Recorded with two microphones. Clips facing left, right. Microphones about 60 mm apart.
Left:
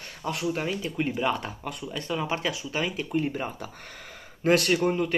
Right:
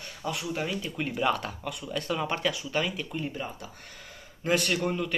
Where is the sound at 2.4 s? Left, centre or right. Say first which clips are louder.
Even; centre.